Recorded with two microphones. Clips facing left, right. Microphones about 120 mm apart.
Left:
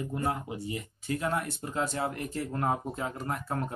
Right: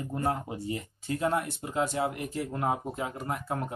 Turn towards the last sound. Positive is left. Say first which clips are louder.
# even
turn(degrees=-15)  # may be behind; listen again after turning